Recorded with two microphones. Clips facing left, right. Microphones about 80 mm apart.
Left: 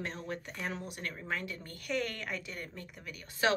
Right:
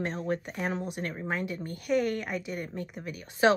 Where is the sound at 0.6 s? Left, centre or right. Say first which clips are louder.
Right 7 dB; right.